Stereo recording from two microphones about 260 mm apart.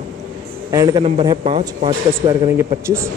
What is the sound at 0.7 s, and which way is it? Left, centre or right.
A man's voice, centre.